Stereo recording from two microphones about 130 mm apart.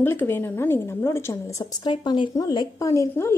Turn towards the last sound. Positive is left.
turn(degrees=20)  # may be behind; listen again after turning